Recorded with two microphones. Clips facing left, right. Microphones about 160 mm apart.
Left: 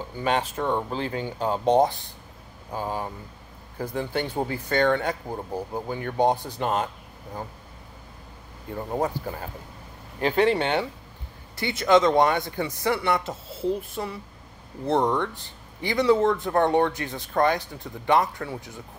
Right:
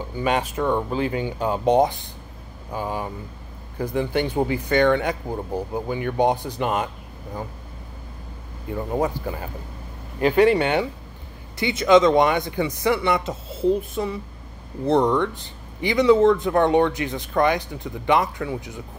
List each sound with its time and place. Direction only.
0.1 s speech: 10° right (ahead or behind)
8.9 s speech: 10° right (ahead or behind)